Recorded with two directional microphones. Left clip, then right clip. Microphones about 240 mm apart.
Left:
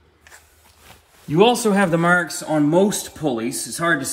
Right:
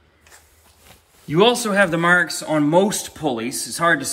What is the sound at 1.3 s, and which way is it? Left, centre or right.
Speech, centre.